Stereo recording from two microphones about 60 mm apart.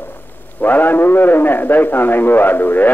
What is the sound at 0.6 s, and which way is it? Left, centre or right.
A man's voice, left.